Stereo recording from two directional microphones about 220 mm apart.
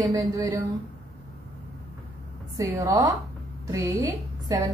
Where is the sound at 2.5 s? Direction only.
15° right (ahead or behind).